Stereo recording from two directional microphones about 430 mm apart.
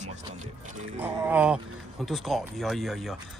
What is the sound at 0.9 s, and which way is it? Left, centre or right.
Speech, centre.